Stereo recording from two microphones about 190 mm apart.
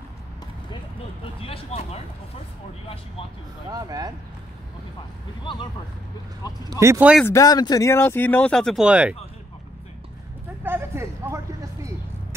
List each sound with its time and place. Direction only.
1.4 s speech: 30° left (ahead or behind)
3.7 s speech: 20° right (ahead or behind)
5.4 s speech: 25° left (ahead or behind)
6.7 s speech: 15° right (ahead or behind)
7.2 s speech: 20° left (ahead or behind); by 9.1 s 5° right (ahead or behind)
10.6 s vehicle: 10° right (ahead or behind)